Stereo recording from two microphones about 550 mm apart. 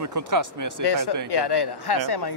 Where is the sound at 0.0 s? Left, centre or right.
Right.